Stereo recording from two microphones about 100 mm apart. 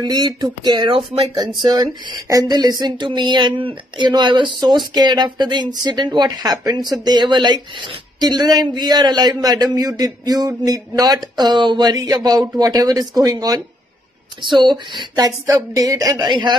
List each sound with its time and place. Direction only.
0.0 s speech: 45° right (ahead or behind)
1.6 s speech: 45° right (ahead or behind)
14.4 s speech: 50° right (ahead or behind)
15.1 s speech: 40° right (ahead or behind)